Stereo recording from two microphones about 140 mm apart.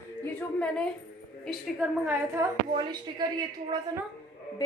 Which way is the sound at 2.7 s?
30° right (ahead or behind).